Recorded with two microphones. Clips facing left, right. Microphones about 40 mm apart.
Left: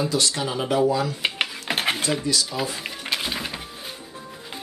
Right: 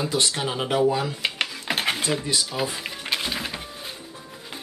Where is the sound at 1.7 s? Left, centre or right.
Centre.